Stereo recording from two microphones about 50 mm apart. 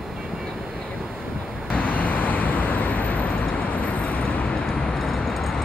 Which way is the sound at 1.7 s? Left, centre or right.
Left.